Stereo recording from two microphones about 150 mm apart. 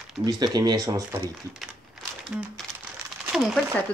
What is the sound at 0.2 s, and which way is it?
Speech, 25° right (ahead or behind).